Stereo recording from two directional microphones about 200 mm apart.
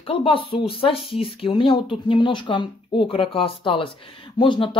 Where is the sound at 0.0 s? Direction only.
25° left (ahead or behind).